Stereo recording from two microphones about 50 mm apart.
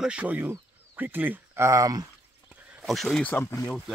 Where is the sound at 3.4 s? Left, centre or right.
Left.